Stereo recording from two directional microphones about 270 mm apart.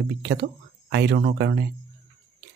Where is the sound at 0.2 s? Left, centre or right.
Right.